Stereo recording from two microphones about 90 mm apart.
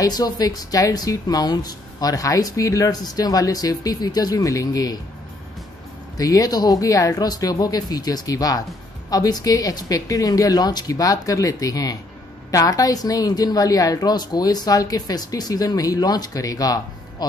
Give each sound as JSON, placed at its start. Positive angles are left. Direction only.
{"t": 0.0, "sound": "speech", "side_deg": 45}
{"t": 6.1, "sound": "speech", "side_deg": 40}